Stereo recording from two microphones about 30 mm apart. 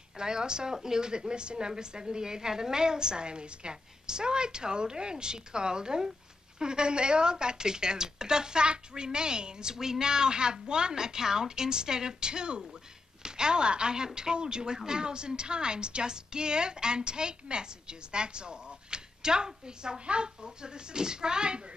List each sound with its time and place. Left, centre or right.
0.2 s a woman's voice: right